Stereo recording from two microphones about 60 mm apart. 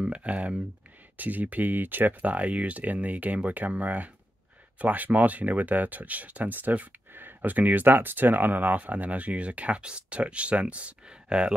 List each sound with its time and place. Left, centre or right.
0.0 s speech: right